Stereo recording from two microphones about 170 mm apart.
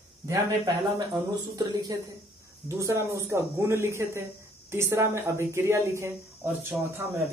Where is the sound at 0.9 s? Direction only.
25° right (ahead or behind).